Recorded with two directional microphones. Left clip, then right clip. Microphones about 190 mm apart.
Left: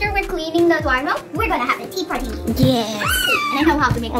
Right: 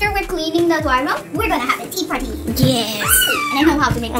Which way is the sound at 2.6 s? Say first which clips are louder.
Right 1 dB; 15° left (ahead or behind).